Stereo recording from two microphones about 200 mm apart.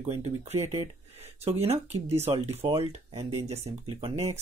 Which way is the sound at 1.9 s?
30° right (ahead or behind).